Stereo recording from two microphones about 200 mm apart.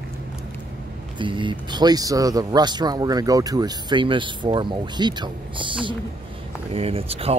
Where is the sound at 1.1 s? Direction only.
25° right (ahead or behind).